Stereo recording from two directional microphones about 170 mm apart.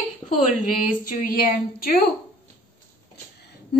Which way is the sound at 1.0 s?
55° left (ahead or behind).